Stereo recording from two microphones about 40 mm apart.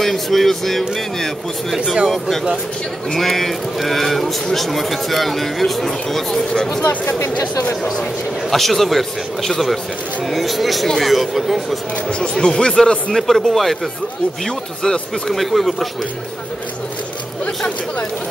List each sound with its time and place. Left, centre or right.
0.0 s speech: centre
8.5 s speech: centre
12.2 s speech: left
13.1 s speech: centre
15.3 s speech: centre